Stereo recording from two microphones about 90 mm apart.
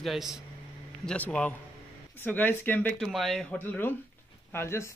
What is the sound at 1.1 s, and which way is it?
A man's voice, 10° left (ahead or behind).